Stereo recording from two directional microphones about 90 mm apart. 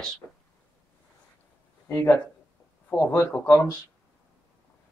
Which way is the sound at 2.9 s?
25° left (ahead or behind).